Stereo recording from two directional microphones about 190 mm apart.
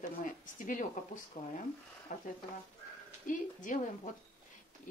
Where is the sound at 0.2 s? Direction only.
45° left (ahead or behind).